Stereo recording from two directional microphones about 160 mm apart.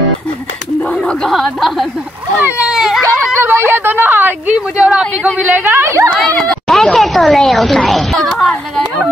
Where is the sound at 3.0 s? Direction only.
15° right (ahead or behind).